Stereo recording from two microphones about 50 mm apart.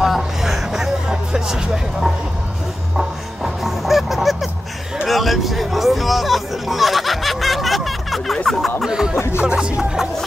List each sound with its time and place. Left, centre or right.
0.0 s music: centre
3.0 s honk: centre
5.0 s hubbub: centre
8.5 s music: centre
8.8 s music: centre
9.4 s speech: right